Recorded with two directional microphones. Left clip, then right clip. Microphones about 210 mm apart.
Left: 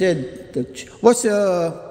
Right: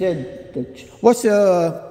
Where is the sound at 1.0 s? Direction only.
10° right (ahead or behind).